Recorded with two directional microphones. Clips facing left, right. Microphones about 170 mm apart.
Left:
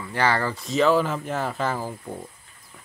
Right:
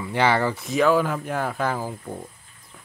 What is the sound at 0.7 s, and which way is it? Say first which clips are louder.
Speech: even; 5° right (ahead or behind).